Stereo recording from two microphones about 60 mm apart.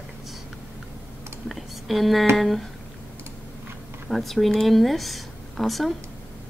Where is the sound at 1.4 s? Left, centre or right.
Centre.